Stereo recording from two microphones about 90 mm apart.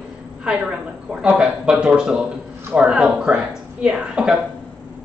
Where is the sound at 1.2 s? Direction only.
10° right (ahead or behind).